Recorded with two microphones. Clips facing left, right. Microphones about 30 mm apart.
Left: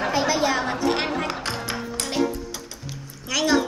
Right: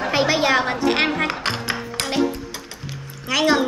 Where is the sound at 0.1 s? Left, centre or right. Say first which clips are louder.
Right 6 dB; right.